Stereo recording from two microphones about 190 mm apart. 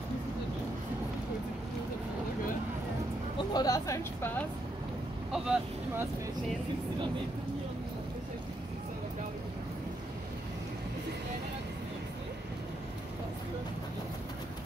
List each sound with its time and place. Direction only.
3.5 s a woman's voice: 20° left (ahead or behind)
5.3 s speech: 5° right (ahead or behind)